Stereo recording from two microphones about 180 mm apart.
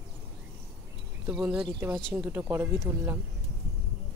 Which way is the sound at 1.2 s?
5° right (ahead or behind).